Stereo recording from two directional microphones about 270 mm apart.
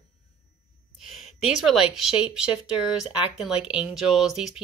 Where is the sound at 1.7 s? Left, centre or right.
Centre.